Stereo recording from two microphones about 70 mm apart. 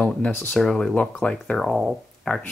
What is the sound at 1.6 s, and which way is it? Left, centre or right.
Speech, centre.